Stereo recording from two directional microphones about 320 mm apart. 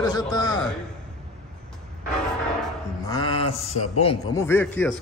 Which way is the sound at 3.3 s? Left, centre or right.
Left.